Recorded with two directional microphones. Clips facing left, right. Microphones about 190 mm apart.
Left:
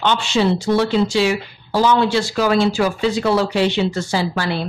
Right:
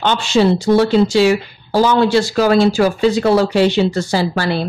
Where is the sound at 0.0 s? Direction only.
40° right (ahead or behind).